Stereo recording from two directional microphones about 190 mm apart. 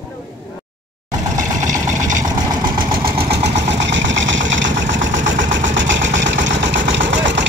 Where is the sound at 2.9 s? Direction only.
55° right (ahead or behind).